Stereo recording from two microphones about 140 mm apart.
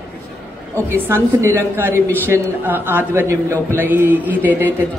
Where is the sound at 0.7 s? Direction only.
15° right (ahead or behind).